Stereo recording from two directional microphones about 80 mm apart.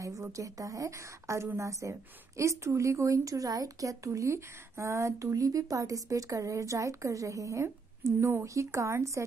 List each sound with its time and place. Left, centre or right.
0.0 s a woman's voice: right